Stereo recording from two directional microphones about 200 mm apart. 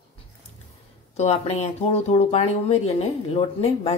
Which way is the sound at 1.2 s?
35° left (ahead or behind).